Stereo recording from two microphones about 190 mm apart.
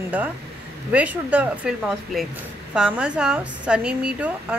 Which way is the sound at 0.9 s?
5° right (ahead or behind).